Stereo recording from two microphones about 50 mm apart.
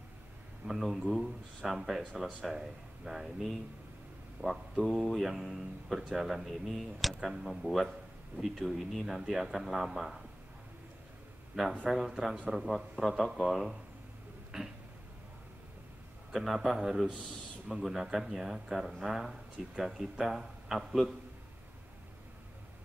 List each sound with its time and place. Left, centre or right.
0.7 s a man's voice: centre
4.4 s speech: right
4.7 s a man's voice: centre
5.2 s a man's voice: centre
11.6 s speech: centre
12.4 s a man's voice: centre
14.5 s a sound: centre
16.3 s a man's voice: centre